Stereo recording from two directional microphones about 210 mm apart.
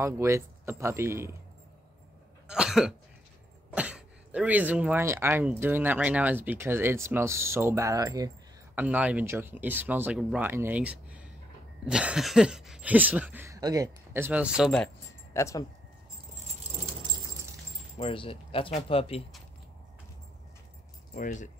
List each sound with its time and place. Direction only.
0.0 s speech: 15° right (ahead or behind)
2.4 s cough: 5° right (ahead or behind)
3.7 s speech: 5° right (ahead or behind)
15.3 s speech: 15° left (ahead or behind)
17.9 s speech: 25° left (ahead or behind)
21.1 s speech: 35° left (ahead or behind)